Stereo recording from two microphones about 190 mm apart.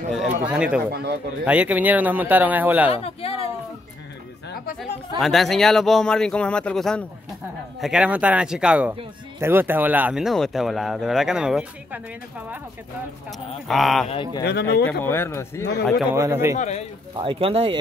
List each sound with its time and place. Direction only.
0.1 s a man's voice: 5° right (ahead or behind)
2.9 s speech: 30° left (ahead or behind)
5.2 s speech: centre (ahead or behind)
13.7 s speech: centre (ahead or behind)
14.0 s speech: 25° left (ahead or behind)
14.4 s speech: 60° left (ahead or behind)
14.9 s speech: 10° left (ahead or behind)
16.1 s a man's voice: 15° right (ahead or behind)
16.5 s speech: 35° left (ahead or behind)
17.1 s speech: 25° right (ahead or behind)